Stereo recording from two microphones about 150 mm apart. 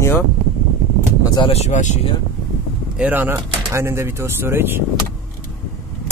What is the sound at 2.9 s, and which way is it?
Speech, 10° right (ahead or behind).